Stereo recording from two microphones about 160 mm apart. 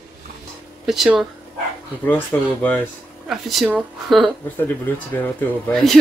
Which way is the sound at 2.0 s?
10° left (ahead or behind).